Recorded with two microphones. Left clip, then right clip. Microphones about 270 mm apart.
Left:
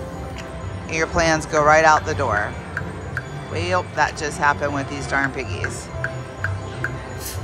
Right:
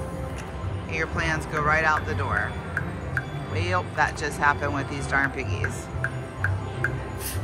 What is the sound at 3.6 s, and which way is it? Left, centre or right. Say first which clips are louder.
Speech: left 4 dB; centre.